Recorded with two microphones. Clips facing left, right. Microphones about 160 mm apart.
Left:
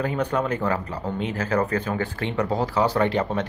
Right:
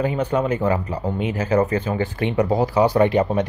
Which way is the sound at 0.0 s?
10° right (ahead or behind).